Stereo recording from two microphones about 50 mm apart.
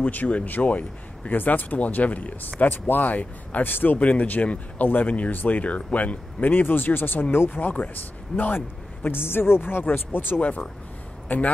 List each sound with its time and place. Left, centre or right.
0.0 s speech: left
11.2 s a man's voice: left